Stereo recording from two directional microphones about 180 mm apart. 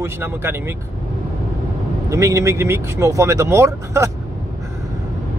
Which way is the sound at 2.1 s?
15° right (ahead or behind).